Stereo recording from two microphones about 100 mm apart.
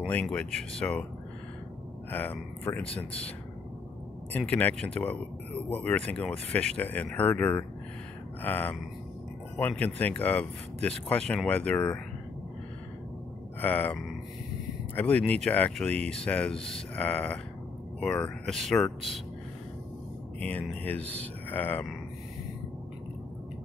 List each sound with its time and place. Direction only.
0.0 s speech: 15° left (ahead or behind)
2.0 s speech: 20° left (ahead or behind)
4.5 s speech: 15° left (ahead or behind)
13.6 s speech: 15° left (ahead or behind)
15.0 s speech: 15° left (ahead or behind)
20.3 s speech: 15° left (ahead or behind)